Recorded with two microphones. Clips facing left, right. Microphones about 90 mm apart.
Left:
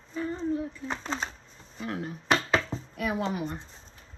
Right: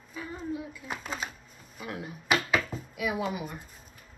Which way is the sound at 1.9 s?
40° left (ahead or behind).